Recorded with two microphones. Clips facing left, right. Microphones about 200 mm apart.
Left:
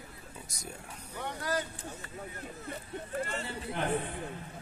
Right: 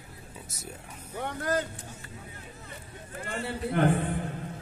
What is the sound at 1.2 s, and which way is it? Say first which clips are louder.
Speech: right 5 dB; 55° right (ahead or behind).